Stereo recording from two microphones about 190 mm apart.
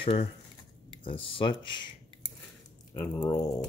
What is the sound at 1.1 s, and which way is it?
Speech, 30° left (ahead or behind).